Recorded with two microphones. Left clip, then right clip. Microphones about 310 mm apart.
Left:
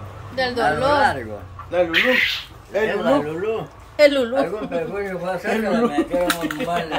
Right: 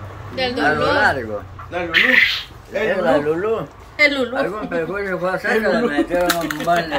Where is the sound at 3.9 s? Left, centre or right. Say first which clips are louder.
Left 1 dB; left.